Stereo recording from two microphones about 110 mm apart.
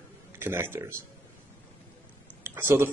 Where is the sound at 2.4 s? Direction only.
20° right (ahead or behind).